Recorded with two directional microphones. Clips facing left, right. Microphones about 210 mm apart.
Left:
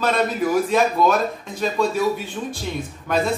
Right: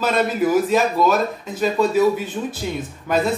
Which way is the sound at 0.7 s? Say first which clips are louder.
Right 1 dB; centre (ahead or behind).